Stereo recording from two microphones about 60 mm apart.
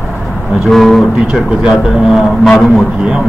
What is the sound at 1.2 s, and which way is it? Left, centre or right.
A man's voice, centre.